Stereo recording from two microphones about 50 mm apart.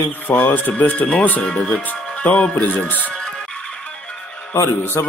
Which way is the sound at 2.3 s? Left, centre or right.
Left.